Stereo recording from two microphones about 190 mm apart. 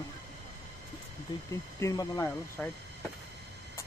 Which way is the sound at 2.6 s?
5° left (ahead or behind).